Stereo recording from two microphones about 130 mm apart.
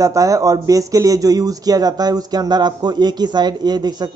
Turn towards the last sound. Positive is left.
turn(degrees=-30)  # may be behind; listen again after turning